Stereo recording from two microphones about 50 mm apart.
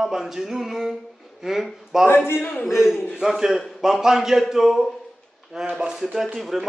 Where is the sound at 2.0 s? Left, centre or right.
Left.